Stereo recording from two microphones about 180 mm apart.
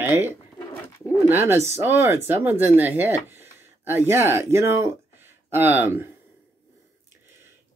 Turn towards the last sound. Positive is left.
turn(degrees=-10)  # may be behind; listen again after turning